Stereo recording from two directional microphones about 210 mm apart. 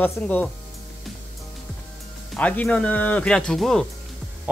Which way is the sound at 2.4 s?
5° left (ahead or behind).